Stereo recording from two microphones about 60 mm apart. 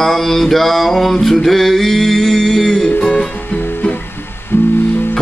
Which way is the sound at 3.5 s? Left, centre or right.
Left.